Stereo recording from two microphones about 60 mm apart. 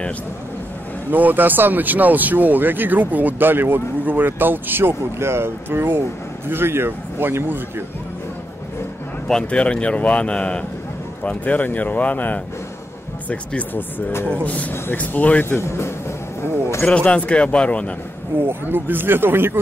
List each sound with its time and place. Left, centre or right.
1.1 s speech: right
9.3 s speech: centre
15.6 s speech: left
16.8 s speech: centre
18.5 s speech: right